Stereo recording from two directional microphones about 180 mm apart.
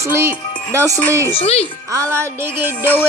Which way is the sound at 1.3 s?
35° left (ahead or behind).